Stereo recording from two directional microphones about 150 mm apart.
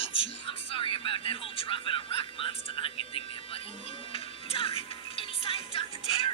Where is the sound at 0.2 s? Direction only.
40° left (ahead or behind).